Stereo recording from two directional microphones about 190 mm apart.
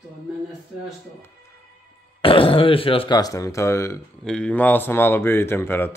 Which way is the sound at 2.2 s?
30° left (ahead or behind).